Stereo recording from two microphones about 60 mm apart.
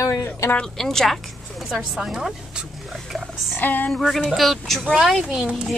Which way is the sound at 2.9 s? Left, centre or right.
Centre.